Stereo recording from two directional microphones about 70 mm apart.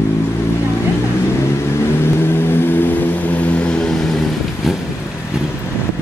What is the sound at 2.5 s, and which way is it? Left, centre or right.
Vehicle, left.